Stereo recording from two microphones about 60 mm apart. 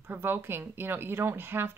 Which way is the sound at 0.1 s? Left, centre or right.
Right.